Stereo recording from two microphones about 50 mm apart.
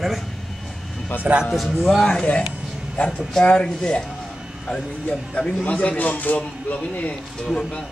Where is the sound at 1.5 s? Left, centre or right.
Centre.